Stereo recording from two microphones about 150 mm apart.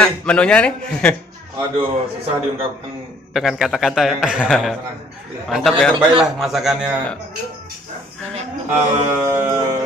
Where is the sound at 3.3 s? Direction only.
Centre (ahead or behind).